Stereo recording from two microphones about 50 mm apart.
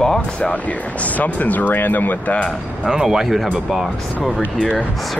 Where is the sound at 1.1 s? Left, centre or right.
Left.